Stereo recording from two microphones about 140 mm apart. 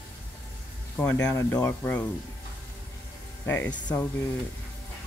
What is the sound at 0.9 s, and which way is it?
Speech, 10° left (ahead or behind).